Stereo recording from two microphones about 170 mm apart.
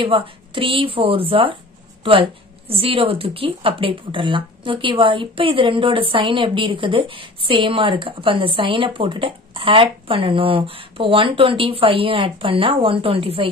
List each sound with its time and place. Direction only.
0.0 s speech: 30° right (ahead or behind)
2.7 s speech: 35° right (ahead or behind)